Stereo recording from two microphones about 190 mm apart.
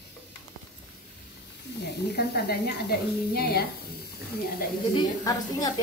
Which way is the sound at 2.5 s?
55° left (ahead or behind).